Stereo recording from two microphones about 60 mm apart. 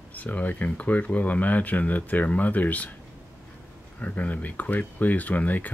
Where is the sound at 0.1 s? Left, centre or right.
Left.